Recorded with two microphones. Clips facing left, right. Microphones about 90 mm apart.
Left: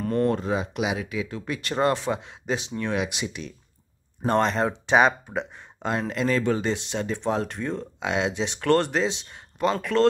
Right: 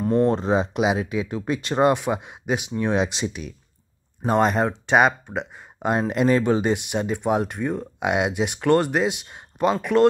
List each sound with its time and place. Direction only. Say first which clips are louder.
0.0 s speech: right 4 dB; 20° right (ahead or behind)
4.3 s speech: right 3 dB; 10° right (ahead or behind)
5.8 s speech: right 5 dB; 15° right (ahead or behind)